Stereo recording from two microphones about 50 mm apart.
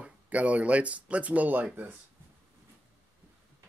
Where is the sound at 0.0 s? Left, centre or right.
Right.